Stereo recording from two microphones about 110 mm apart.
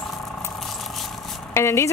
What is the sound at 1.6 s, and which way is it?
Speech, 25° left (ahead or behind).